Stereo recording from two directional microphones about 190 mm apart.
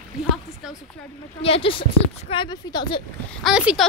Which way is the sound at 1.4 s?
30° left (ahead or behind).